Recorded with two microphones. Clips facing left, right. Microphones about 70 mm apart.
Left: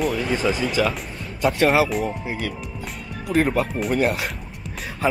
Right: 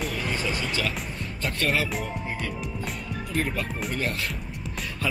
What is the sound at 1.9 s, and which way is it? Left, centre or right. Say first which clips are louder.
Speech: left 6 dB; centre.